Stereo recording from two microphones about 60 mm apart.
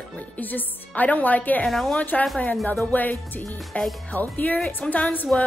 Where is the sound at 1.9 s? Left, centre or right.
Left.